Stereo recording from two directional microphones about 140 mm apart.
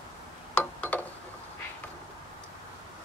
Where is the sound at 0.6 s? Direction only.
15° left (ahead or behind).